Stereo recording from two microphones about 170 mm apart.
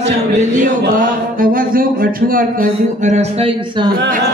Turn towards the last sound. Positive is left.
turn(degrees=-35)  # may be behind; listen again after turning